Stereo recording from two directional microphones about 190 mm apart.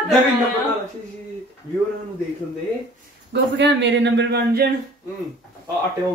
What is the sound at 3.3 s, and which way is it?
Speech, 65° right (ahead or behind).